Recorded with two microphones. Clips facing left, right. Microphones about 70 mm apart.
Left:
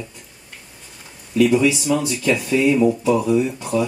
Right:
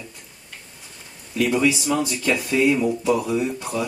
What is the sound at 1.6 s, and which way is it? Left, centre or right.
Speech, centre.